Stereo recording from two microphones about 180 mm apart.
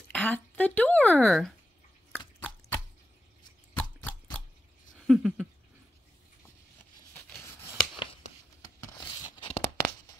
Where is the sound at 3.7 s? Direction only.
10° left (ahead or behind).